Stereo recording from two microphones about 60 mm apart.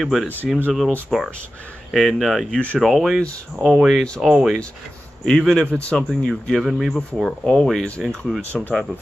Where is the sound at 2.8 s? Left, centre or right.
Centre.